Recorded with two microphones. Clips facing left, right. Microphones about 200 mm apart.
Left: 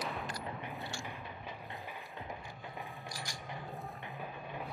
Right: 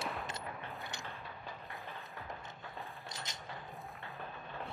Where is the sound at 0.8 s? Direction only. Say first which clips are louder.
Left 3 dB; 20° right (ahead or behind).